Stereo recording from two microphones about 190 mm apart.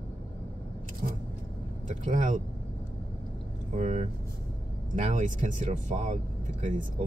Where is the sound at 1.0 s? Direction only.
40° right (ahead or behind).